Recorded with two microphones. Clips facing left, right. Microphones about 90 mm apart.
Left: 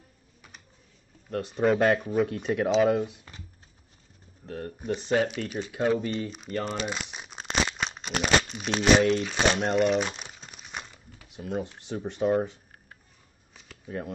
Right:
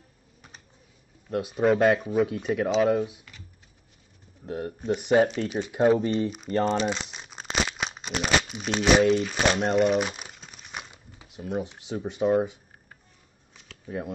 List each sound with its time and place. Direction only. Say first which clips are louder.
1.3 s speech: right 2 dB; 5° right (ahead or behind)
4.5 s speech: right 4 dB; 15° right (ahead or behind)
5.5 s speech: right 3 dB; 30° right (ahead or behind)
6.2 s speech: right 6 dB; centre (ahead or behind)
6.5 s speech: right 7 dB; 35° right (ahead or behind)
6.9 s crumpling: right 3 dB; 5° left (ahead or behind)
8.2 s speech: left 1 dB; centre (ahead or behind)
13.5 s a sound: right 1 dB; centre (ahead or behind)